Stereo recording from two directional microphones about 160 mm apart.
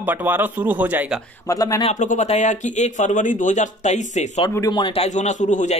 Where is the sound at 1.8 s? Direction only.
50° left (ahead or behind).